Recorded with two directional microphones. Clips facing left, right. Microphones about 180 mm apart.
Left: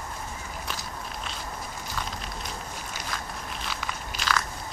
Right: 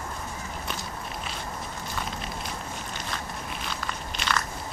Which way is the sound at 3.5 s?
Centre (ahead or behind).